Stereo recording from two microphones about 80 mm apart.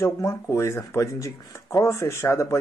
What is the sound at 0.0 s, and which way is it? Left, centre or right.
Speech, left.